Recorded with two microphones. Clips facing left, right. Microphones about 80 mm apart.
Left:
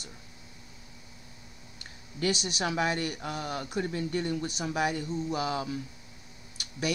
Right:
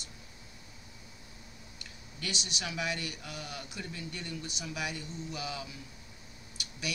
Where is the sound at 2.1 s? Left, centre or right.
Left.